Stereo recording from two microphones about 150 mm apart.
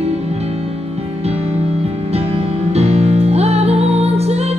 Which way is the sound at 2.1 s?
45° right (ahead or behind).